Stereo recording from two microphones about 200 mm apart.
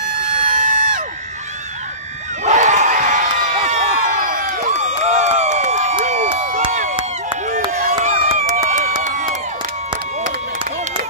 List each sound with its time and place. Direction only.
0.2 s crowd: 40° right (ahead or behind)
2.4 s crowd: 35° right (ahead or behind)
6.7 s a sound: 35° right (ahead or behind)